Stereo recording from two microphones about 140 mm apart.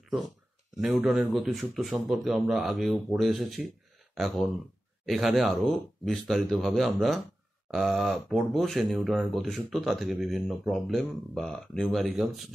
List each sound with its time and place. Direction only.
0.7 s speech: 5° right (ahead or behind)